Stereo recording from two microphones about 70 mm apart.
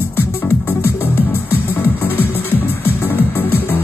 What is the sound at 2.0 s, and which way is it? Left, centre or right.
Music, left.